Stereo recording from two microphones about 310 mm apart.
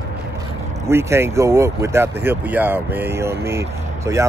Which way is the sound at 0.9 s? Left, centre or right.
Centre.